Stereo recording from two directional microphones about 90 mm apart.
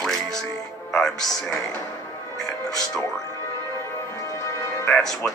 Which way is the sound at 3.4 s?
30° left (ahead or behind).